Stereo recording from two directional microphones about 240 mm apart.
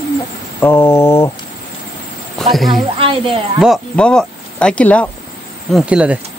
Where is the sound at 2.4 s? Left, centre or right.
Centre.